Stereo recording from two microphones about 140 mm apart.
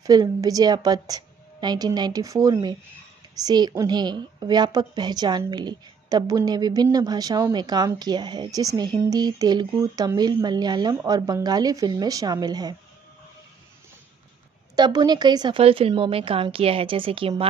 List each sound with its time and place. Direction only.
0.0 s a woman's voice: 25° right (ahead or behind)
14.8 s a woman's voice: 30° right (ahead or behind)